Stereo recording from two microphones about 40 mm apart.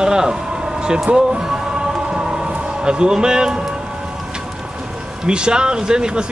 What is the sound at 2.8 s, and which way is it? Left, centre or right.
Speech, right.